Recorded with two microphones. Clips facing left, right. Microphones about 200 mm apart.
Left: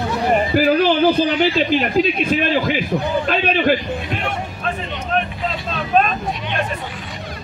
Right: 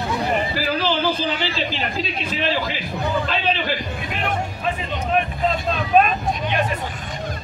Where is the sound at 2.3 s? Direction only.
55° left (ahead or behind).